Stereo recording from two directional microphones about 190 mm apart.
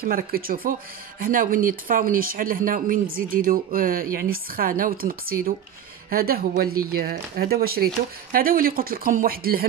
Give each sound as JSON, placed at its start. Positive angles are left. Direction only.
{"t": 0.0, "sound": "speech", "side_deg": -50}